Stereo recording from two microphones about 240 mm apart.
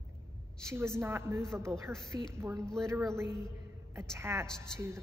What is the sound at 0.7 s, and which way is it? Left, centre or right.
Speech, centre.